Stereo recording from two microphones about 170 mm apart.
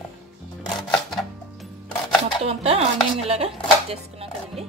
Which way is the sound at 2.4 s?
35° right (ahead or behind).